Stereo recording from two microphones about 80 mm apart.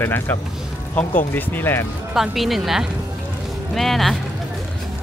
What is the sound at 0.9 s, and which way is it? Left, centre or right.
Speech, left.